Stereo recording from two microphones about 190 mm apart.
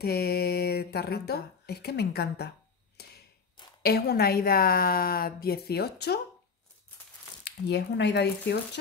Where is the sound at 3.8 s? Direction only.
55° left (ahead or behind).